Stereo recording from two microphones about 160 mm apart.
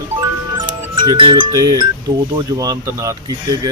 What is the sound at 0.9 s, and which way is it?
Speech, 30° right (ahead or behind).